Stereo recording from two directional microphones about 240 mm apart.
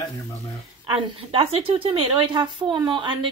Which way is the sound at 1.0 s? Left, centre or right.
Right.